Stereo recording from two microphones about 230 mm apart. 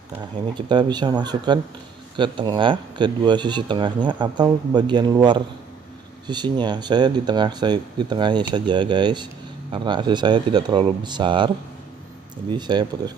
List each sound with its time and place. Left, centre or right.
0.1 s speech: centre